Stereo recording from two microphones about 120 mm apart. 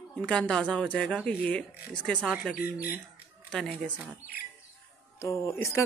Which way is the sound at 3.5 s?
5° left (ahead or behind).